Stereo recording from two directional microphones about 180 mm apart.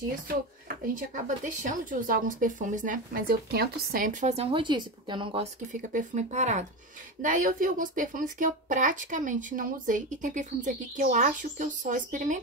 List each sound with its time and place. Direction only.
0.9 s speech: 45° right (ahead or behind); by 5.5 s 30° right (ahead or behind)
5.7 s speech: 45° right (ahead or behind)